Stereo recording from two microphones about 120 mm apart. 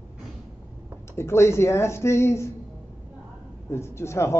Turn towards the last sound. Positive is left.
turn(degrees=20)  # may be behind; listen again after turning